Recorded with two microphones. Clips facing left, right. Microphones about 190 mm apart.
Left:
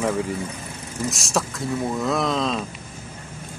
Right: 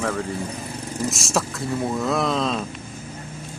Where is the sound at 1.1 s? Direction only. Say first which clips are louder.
Even; centre (ahead or behind).